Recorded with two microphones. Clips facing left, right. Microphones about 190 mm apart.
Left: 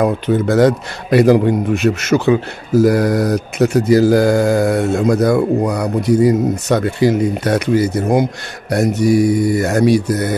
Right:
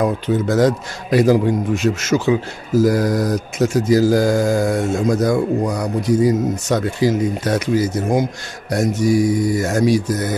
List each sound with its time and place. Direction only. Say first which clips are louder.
0.0 s a man's voice: left 3 dB; 60° left (ahead or behind)